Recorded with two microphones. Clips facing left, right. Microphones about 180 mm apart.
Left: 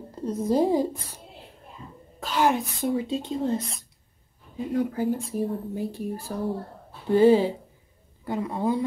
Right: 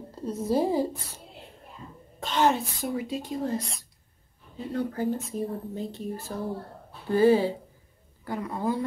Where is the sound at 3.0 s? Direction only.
25° left (ahead or behind).